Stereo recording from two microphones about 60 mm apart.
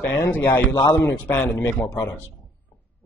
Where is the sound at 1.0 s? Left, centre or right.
Left.